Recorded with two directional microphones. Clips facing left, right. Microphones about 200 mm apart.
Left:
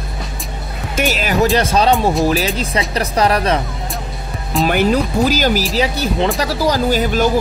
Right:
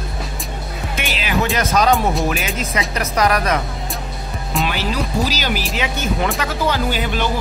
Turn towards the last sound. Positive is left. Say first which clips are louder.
# left 6 dB
turn(degrees=40)  # may be behind; listen again after turning